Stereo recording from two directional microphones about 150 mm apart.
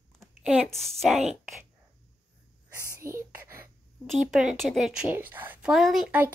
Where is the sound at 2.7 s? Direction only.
20° right (ahead or behind).